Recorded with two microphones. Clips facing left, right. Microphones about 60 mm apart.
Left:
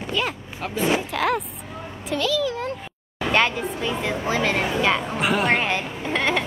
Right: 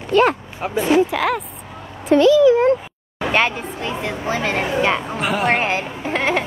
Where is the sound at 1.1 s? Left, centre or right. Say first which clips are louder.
Right 2 dB; centre.